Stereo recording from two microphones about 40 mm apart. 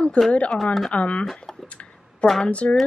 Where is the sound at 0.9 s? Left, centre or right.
Left.